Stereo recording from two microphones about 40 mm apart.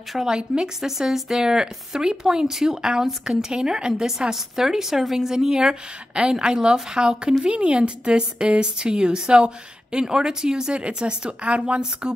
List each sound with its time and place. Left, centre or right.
0.1 s speech: centre
4.3 s a woman's voice: centre; by 11.8 s right